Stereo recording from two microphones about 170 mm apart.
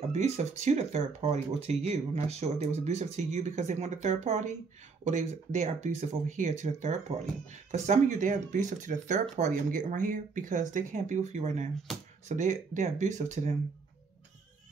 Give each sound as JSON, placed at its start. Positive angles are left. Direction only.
{"t": 0.1, "sound": "speech", "side_deg": -40}